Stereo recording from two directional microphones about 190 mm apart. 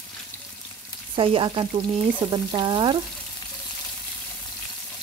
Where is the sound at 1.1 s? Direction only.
30° right (ahead or behind).